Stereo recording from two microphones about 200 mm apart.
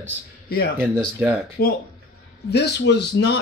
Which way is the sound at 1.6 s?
50° left (ahead or behind).